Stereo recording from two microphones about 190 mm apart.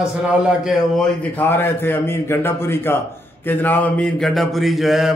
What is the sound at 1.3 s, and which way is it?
A man's voice, 10° left (ahead or behind).